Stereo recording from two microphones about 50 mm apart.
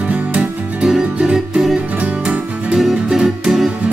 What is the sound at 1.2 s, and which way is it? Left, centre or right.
Music, centre.